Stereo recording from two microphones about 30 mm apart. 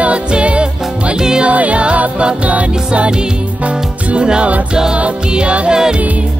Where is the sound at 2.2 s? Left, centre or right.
Right.